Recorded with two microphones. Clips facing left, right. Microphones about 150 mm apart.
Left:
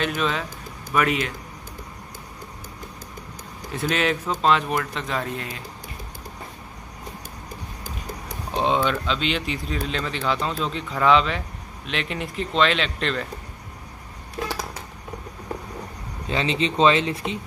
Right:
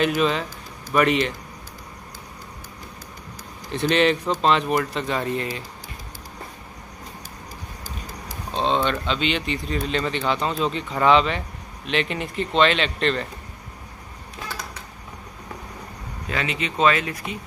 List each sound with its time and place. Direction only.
0.0 s speech: 5° right (ahead or behind)
3.9 s speech: centre (ahead or behind)
8.5 s speech: 10° left (ahead or behind)
16.3 s speech: 30° left (ahead or behind)